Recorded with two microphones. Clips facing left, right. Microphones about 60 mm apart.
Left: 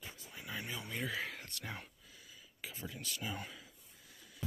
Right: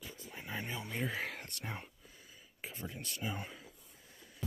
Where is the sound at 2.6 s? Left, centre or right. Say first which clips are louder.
Right 2 dB; right.